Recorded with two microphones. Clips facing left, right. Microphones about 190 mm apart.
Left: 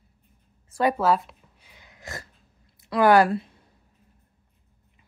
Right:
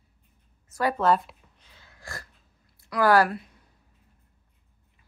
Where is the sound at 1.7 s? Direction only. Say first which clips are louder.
Left 3 dB; 15° left (ahead or behind).